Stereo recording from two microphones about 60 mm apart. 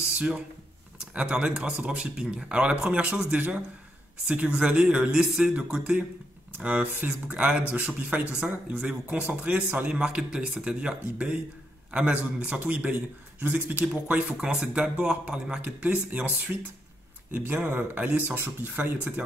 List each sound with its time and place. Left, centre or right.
1.1 s a man's voice: centre
15.6 s speech: right
17.6 s speech: right